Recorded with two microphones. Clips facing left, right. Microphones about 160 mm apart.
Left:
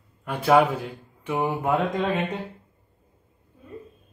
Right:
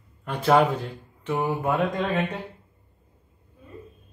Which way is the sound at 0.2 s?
10° left (ahead or behind).